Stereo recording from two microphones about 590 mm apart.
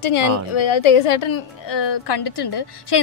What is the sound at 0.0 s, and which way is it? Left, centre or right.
A woman's voice, left.